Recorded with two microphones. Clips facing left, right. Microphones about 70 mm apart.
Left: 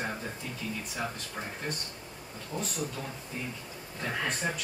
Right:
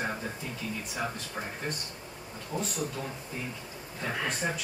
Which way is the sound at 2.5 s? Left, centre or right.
Centre.